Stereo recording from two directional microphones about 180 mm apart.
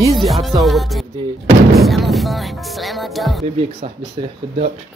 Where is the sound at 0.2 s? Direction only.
Centre (ahead or behind).